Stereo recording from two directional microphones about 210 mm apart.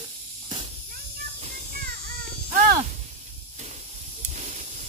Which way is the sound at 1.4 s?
40° right (ahead or behind).